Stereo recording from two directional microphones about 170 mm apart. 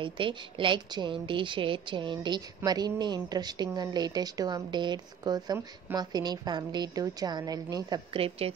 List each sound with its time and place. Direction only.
0.0 s a woman's voice: 30° right (ahead or behind)